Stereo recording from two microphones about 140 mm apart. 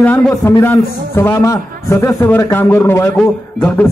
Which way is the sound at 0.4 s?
20° left (ahead or behind).